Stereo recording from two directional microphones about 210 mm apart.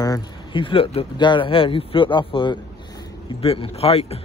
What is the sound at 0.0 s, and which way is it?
Speech, 20° left (ahead or behind).